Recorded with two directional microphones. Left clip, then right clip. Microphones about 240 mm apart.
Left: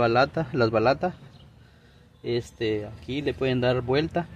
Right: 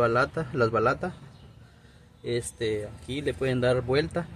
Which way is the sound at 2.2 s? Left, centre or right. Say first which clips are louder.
Left 2 dB; left.